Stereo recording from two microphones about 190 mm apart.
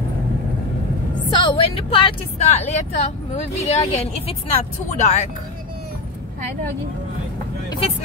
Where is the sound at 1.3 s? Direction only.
25° left (ahead or behind).